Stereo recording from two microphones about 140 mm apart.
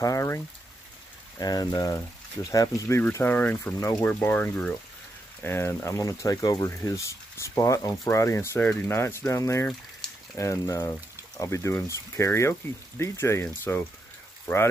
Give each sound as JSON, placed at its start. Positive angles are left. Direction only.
{"t": 0.0, "sound": "speech", "side_deg": 25}
{"t": 1.4, "sound": "speech", "side_deg": 30}
{"t": 3.7, "sound": "speech", "side_deg": 25}
{"t": 4.0, "sound": "speech", "side_deg": 15}